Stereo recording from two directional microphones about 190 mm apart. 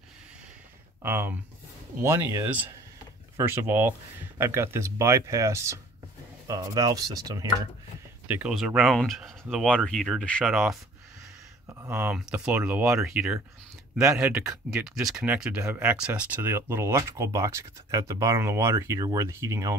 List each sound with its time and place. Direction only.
1.0 s speech: 15° right (ahead or behind)
8.3 s speech: 5° right (ahead or behind)
11.9 s speech: 5° right (ahead or behind)